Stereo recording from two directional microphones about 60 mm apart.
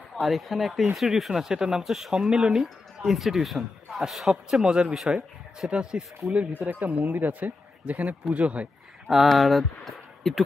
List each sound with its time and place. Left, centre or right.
0.2 s speech: centre
6.6 s speech: right
9.1 s speech: centre